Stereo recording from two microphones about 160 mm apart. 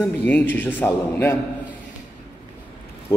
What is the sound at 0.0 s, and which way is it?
A man's voice, 10° left (ahead or behind).